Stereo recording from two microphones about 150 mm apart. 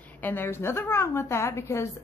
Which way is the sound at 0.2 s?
15° left (ahead or behind).